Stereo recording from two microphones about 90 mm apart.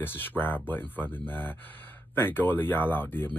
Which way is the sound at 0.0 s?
20° left (ahead or behind).